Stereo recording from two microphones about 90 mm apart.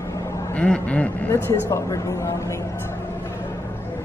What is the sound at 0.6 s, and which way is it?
Speech, 15° left (ahead or behind).